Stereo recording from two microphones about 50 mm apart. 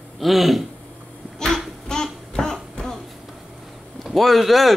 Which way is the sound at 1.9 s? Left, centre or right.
Centre.